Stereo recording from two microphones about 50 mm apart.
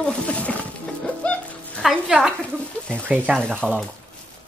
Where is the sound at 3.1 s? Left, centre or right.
Right.